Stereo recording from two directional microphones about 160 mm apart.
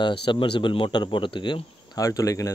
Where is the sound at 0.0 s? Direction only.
30° left (ahead or behind).